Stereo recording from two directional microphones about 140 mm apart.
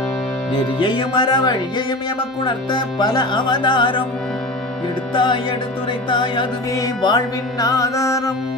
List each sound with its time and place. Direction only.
0.5 s speech: 35° left (ahead or behind)
5.1 s speech: 35° left (ahead or behind)
6.7 s music: 30° left (ahead or behind)